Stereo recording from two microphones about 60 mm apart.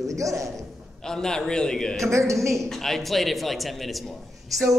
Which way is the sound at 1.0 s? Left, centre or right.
Centre.